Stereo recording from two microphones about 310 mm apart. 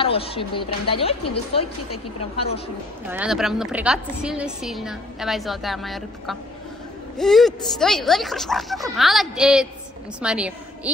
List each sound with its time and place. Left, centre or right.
0.0 s speech: centre
3.1 s a woman's voice: centre